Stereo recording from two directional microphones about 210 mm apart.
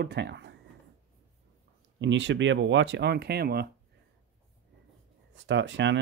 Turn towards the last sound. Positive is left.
turn(degrees=-60)  # may be behind; listen again after turning